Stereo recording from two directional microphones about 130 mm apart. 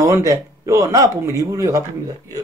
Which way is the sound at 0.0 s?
25° right (ahead or behind).